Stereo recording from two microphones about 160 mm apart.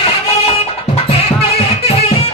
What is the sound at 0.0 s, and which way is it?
Music, 40° left (ahead or behind).